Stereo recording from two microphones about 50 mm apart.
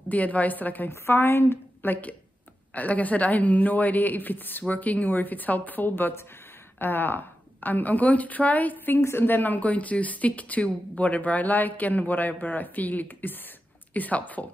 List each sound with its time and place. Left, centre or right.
0.1 s speech: left
1.0 s a woman's voice: left